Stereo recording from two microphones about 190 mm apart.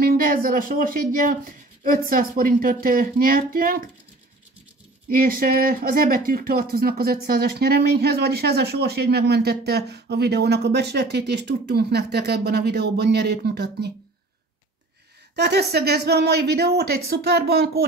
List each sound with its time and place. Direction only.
0.0 s speech: 50° right (ahead or behind)
5.0 s speech: 50° right (ahead or behind)
15.3 s speech: 60° right (ahead or behind)